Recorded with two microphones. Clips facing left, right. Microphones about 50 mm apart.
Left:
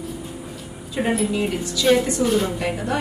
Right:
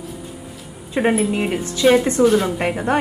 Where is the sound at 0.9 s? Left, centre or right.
Right.